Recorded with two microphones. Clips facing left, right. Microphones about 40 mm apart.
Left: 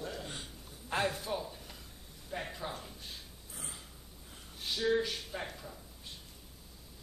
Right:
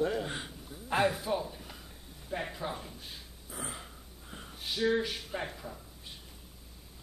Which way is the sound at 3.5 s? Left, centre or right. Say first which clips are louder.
Right 8 dB; right.